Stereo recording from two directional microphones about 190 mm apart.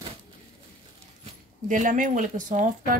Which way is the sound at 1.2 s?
40° right (ahead or behind).